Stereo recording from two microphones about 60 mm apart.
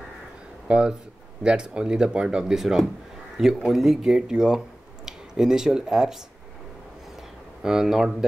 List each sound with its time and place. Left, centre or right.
0.7 s speech: centre
7.6 s speech: centre